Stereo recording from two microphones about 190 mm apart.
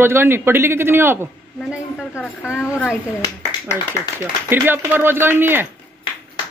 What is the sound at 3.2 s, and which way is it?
Speech, 20° left (ahead or behind).